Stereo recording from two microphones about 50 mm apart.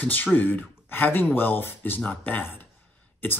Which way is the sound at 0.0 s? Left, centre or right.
Left.